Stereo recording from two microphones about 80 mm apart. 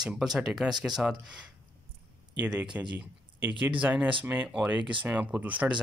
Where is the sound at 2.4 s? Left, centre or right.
Centre.